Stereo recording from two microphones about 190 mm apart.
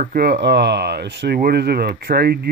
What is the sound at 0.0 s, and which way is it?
Speech, 55° right (ahead or behind).